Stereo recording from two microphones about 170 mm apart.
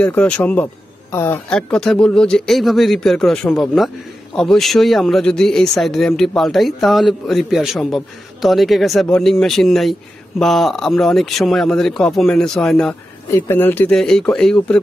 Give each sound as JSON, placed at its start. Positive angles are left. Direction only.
{"t": 0.0, "sound": "a man's voice", "side_deg": 10}